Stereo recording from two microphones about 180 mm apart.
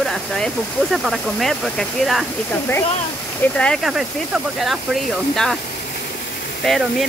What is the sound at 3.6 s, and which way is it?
Speech, 5° left (ahead or behind).